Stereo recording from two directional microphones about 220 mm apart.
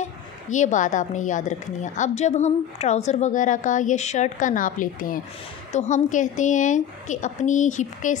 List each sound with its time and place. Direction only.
0.0 s a woman's voice: 35° left (ahead or behind)